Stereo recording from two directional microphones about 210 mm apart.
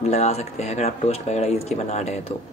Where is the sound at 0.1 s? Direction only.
30° left (ahead or behind).